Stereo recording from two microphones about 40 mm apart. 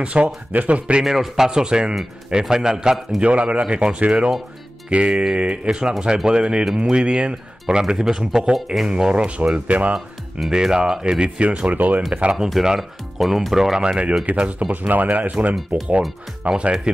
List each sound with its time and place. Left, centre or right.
0.0 s speech: right
0.5 s speech: right
1.0 s speech: centre
1.6 s speech: right
3.2 s speech: right
10.5 s speech: centre
11.2 s speech: right
12.1 s speech: right
12.6 s speech: centre
13.8 s speech: right
14.7 s speech: right
15.7 s speech: right